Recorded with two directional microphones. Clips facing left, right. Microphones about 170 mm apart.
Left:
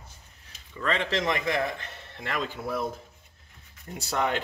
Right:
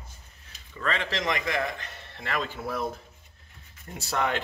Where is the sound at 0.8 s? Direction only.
25° left (ahead or behind).